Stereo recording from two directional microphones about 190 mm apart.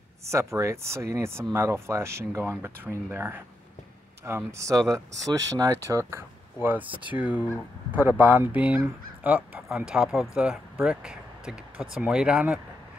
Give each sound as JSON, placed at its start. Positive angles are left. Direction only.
{"t": 0.3, "sound": "speech", "side_deg": -15}